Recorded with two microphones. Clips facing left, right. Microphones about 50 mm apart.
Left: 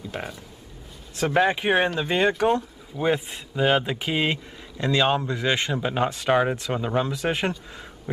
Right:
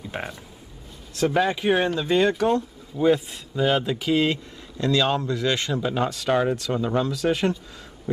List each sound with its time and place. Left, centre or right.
0.1 s speech: centre
1.1 s speech: left